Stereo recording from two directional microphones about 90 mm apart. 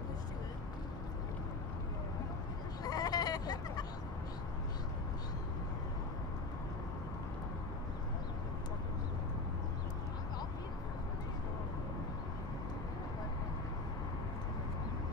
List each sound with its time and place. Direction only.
2.8 s bleat: 45° left (ahead or behind)